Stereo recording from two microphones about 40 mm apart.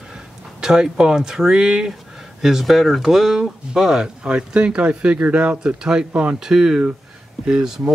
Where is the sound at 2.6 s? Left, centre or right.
Centre.